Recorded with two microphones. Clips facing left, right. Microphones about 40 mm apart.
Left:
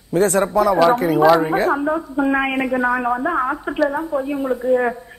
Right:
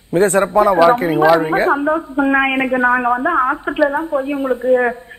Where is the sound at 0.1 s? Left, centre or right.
Right.